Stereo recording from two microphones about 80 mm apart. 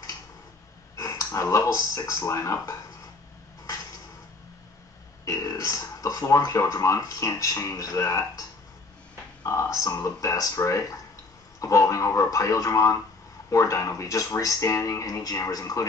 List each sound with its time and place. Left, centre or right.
0.9 s a sound: left
1.6 s speech: left
5.2 s speech: left